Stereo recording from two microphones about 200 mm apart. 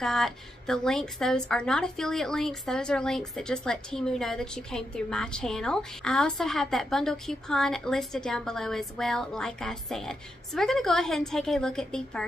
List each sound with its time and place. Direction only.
0.0 s a woman's voice: centre (ahead or behind)